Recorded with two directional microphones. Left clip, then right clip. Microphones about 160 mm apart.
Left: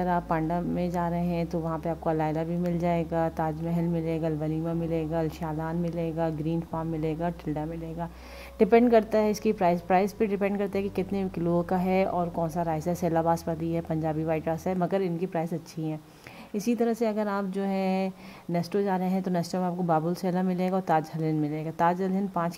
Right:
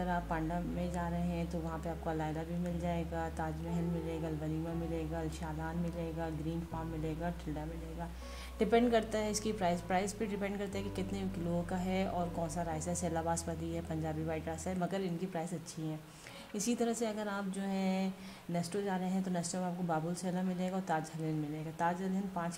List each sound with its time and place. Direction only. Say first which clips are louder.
0.0 s speech: left 9 dB; 50° left (ahead or behind)
4.9 s a woman's voice: left 11 dB; 50° left (ahead or behind)
16.5 s speech: left 8 dB; 35° left (ahead or behind)